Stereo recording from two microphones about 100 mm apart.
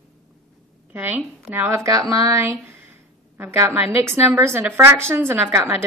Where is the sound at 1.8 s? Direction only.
35° right (ahead or behind).